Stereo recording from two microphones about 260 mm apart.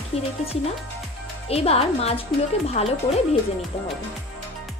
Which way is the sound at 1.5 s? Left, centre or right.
Left.